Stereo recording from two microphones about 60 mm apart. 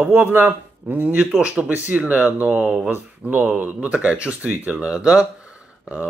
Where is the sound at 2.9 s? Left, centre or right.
Right.